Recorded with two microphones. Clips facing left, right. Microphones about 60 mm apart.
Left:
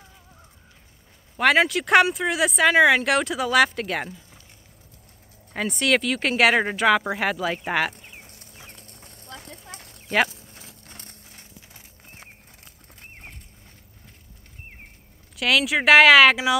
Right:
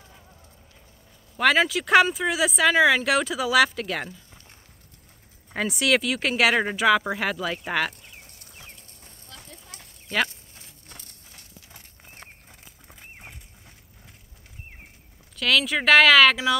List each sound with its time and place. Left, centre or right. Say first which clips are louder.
1.3 s speech: left 2 dB; centre
5.5 s speech: even; centre
9.8 s a sound: left 4 dB; centre
11.7 s horse: even; centre
15.3 s speech: left 2 dB; centre